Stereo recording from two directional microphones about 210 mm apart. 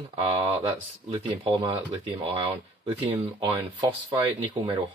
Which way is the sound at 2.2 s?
25° right (ahead or behind).